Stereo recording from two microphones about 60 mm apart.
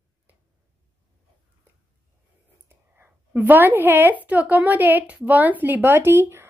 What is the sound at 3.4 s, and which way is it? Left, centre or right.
A woman's voice, right.